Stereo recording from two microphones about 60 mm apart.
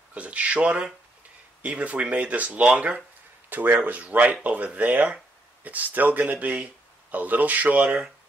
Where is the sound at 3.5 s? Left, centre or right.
Right.